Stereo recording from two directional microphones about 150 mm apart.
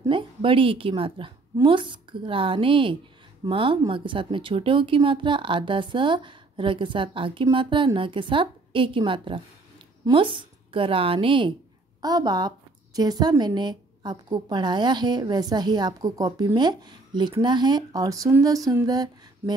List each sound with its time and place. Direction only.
0.1 s a woman's voice: 35° right (ahead or behind)